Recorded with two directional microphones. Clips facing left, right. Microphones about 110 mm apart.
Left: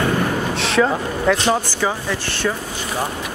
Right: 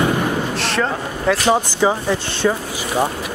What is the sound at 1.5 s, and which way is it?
Speech, 20° right (ahead or behind).